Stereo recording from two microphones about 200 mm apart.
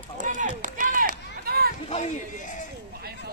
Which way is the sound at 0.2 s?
40° right (ahead or behind).